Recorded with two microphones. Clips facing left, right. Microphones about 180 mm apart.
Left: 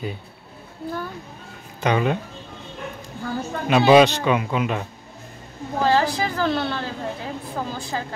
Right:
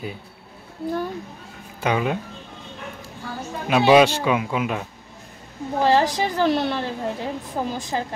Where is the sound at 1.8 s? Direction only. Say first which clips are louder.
Left 2 dB; 5° right (ahead or behind).